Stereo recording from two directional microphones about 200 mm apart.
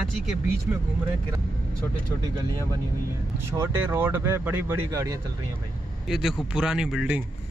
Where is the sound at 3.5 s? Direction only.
10° right (ahead or behind).